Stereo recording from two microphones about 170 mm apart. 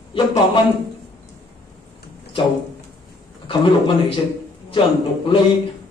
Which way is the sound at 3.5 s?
30° left (ahead or behind).